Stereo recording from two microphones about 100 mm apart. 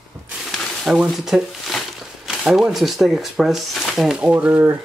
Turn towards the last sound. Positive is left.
turn(degrees=-15)  # may be behind; listen again after turning